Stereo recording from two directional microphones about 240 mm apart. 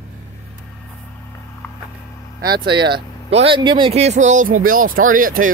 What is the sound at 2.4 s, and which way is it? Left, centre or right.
Speech, centre.